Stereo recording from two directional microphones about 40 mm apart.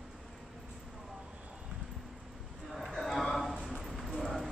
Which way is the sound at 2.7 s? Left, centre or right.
Centre.